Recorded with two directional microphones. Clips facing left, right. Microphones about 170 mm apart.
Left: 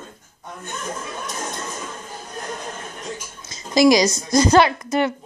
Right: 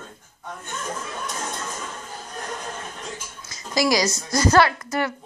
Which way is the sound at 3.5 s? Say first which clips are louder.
Left 7 dB; 20° left (ahead or behind).